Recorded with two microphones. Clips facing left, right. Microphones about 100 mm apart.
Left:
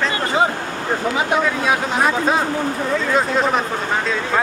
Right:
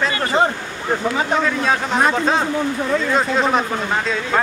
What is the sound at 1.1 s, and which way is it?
Speech, 10° left (ahead or behind).